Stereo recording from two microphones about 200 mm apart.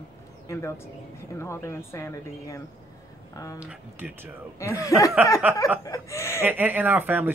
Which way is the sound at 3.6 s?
5° right (ahead or behind).